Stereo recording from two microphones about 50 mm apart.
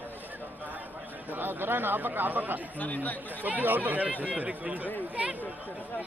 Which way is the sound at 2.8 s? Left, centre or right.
Left.